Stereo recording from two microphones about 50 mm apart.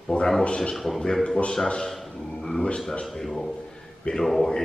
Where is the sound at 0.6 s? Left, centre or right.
Centre.